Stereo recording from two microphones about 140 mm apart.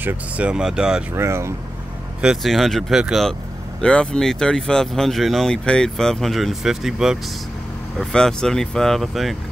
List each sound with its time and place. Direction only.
0.0 s speech: 10° right (ahead or behind)
1.1 s speech: 20° right (ahead or behind)
2.2 s speech: centre (ahead or behind)